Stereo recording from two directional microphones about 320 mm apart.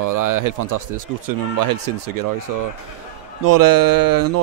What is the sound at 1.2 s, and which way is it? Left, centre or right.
Speech, right.